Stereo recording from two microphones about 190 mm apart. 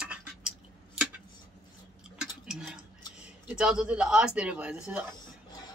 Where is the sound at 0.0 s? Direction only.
5° right (ahead or behind).